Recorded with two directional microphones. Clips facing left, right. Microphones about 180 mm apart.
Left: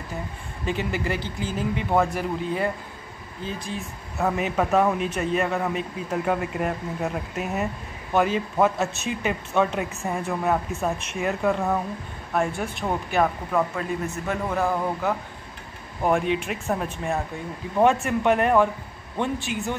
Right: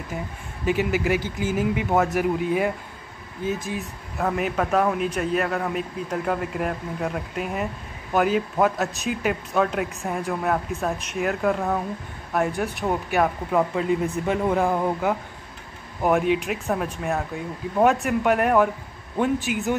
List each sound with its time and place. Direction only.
0.7 s a man's voice: 10° right (ahead or behind)
4.2 s speech: centre (ahead or behind)
13.5 s a man's voice: 15° right (ahead or behind)